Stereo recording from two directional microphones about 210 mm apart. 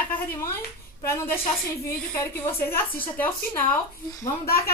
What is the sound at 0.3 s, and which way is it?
A woman's voice, 10° left (ahead or behind).